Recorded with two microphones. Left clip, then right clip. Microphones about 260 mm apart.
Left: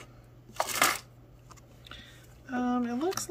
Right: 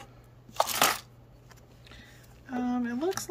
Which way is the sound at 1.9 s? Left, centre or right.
Centre.